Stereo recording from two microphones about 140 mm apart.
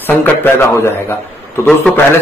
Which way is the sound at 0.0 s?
10° left (ahead or behind).